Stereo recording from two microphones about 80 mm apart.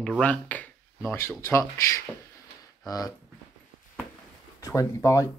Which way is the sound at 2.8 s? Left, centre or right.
Left.